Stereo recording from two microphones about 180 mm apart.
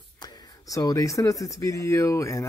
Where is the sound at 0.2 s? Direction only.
20° left (ahead or behind).